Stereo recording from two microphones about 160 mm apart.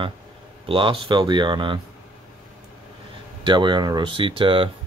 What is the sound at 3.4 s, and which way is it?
Speech, 30° right (ahead or behind).